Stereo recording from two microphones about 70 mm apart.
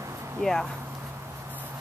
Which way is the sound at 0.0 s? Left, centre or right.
Right.